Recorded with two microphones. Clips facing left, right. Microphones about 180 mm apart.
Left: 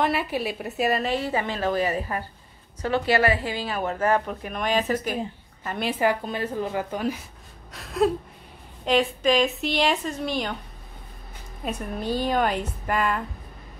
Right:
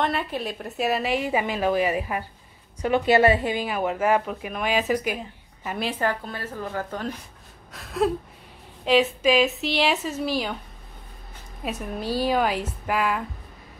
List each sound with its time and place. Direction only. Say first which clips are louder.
0.0 s a woman's voice: left 2 dB; 5° left (ahead or behind)
6.0 s a woman's voice: left 4 dB; 15° left (ahead or behind)
7.7 s a woman's voice: left 1 dB; centre (ahead or behind)
11.6 s a woman's voice: even; 5° right (ahead or behind)